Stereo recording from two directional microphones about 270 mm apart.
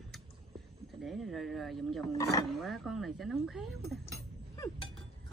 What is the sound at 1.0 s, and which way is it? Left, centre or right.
Speech, centre.